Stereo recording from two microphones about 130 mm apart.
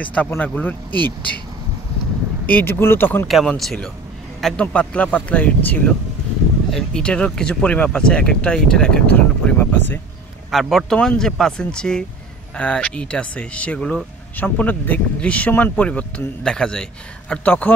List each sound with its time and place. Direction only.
0.0 s speech: 10° left (ahead or behind)
2.4 s speech: 15° left (ahead or behind)
3.3 s speech: centre (ahead or behind)
10.5 s speech: centre (ahead or behind)